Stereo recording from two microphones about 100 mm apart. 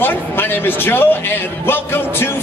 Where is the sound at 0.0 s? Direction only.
20° left (ahead or behind).